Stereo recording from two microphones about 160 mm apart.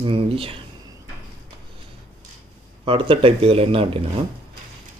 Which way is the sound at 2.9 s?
35° right (ahead or behind).